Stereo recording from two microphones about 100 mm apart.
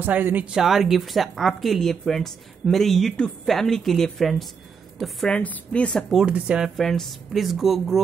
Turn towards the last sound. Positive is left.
turn(degrees=0)  # may be behind; listen again after turning